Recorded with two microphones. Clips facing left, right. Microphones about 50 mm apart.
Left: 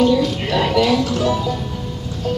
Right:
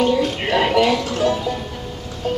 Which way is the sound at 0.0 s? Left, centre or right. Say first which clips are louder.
Left 2 dB; right.